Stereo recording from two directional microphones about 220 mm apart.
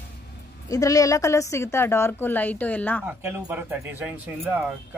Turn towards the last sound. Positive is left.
turn(degrees=-5)  # may be behind; listen again after turning